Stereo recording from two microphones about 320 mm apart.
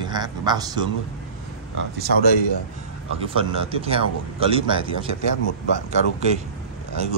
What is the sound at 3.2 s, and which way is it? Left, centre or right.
Speech, centre.